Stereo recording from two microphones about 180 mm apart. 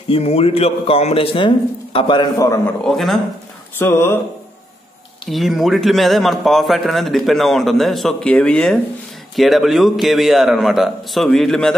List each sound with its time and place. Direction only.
0.1 s speech: 35° left (ahead or behind); by 2.6 s 20° left (ahead or behind)
2.8 s a man's voice: centre (ahead or behind)
3.7 s speech: 15° left (ahead or behind)
5.2 s a man's voice: centre (ahead or behind)